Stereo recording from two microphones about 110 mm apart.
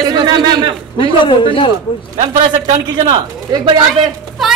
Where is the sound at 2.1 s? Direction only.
90° right.